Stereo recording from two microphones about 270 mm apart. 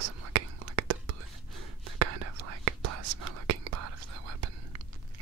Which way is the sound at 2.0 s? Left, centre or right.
Right.